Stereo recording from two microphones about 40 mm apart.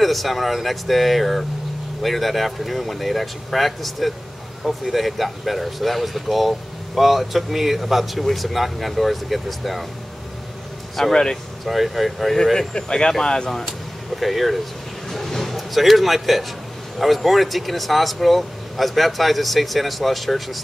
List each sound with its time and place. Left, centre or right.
0.0 s speech: centre
11.0 s speech: centre
11.6 s speech: centre
12.5 s speech: centre
14.2 s speech: centre